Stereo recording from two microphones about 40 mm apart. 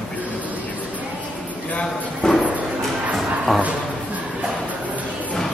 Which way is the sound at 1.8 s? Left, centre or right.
Left.